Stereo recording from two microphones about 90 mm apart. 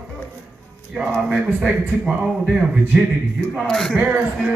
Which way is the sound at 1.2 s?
5° right (ahead or behind).